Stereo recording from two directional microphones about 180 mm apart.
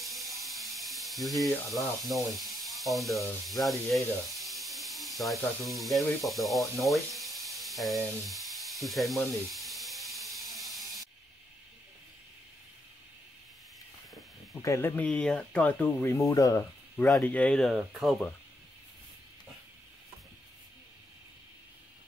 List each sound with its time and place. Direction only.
0.0 s ratchet: centre (ahead or behind)
2.0 s speech: centre (ahead or behind)
7.2 s steam: centre (ahead or behind)
14.5 s speech: 15° left (ahead or behind)
16.9 s speech: 5° left (ahead or behind)